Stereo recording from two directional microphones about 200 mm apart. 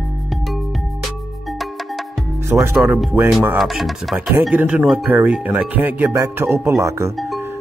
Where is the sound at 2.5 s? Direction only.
10° right (ahead or behind).